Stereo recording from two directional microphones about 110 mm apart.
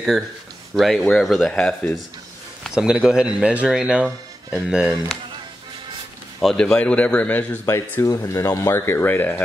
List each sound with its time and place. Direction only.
0.7 s speech: centre (ahead or behind)
2.7 s speech: 5° right (ahead or behind)
6.4 s a man's voice: 5° left (ahead or behind)